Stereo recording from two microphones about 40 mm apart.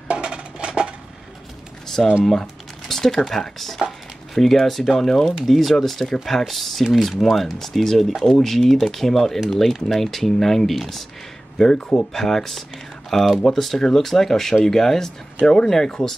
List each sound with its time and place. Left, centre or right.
0.1 s music: right
2.0 s speech: centre
2.9 s a sound: centre
3.3 s speech: centre
11.5 s speech: centre